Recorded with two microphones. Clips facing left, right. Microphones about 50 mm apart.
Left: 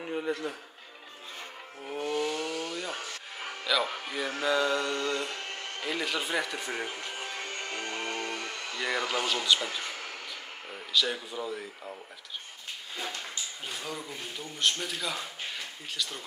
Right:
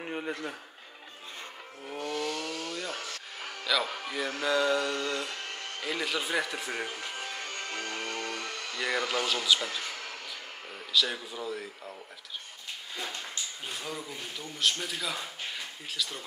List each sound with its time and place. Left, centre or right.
0.4 s speech: centre
2.0 s music: centre
3.6 s speech: centre
5.5 s a sound: centre
5.9 s speech: centre
7.4 s music: left
8.7 s speech: centre
13.3 s speech: centre